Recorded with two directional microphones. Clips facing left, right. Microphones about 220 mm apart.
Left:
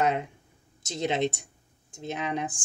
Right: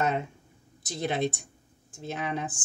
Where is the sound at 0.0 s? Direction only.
15° left (ahead or behind).